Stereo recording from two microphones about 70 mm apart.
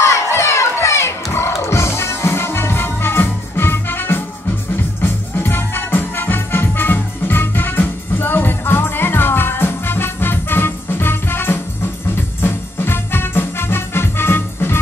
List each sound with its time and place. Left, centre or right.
0.0 s crowd: left
1.6 s music: left